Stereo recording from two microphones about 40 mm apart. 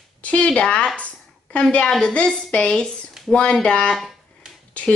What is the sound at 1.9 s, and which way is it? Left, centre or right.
Speech, centre.